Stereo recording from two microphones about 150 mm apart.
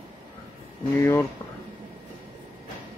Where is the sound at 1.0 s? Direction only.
15° left (ahead or behind).